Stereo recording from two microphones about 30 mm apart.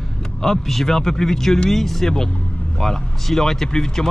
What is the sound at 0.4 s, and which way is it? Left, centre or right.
Speech, centre.